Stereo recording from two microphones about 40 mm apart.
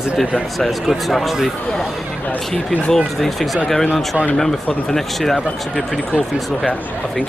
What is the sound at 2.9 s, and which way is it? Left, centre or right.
Speech, centre.